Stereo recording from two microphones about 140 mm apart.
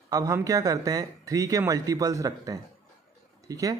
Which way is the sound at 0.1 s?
25° right (ahead or behind).